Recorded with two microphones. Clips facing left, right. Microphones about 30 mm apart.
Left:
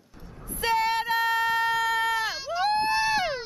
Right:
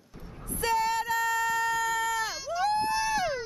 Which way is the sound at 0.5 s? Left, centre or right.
Left.